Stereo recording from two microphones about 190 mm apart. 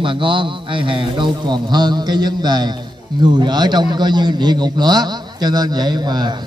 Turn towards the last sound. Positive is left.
turn(degrees=-20)  # may be behind; listen again after turning